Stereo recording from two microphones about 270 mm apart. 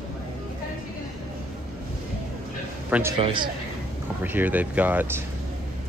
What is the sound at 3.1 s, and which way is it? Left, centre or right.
Speech, centre.